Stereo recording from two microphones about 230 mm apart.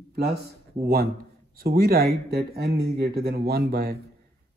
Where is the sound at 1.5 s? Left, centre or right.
Right.